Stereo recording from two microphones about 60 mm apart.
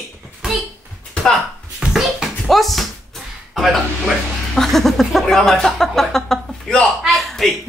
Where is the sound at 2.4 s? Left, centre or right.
Centre.